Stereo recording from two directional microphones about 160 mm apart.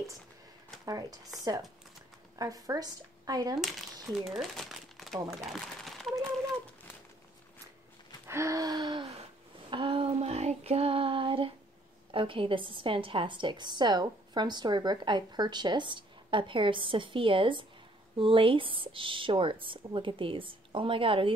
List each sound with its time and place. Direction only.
0.8 s speech: 25° right (ahead or behind)
2.3 s speech: 20° right (ahead or behind)
3.5 s speech: centre (ahead or behind)
8.3 s gasp: 20° right (ahead or behind)
9.7 s a woman's voice: 35° right (ahead or behind)